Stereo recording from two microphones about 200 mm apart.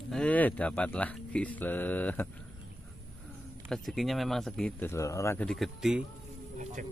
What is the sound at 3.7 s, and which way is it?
Speech, centre (ahead or behind).